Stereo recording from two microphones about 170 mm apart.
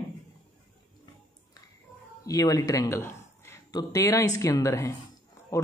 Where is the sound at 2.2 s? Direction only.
20° left (ahead or behind).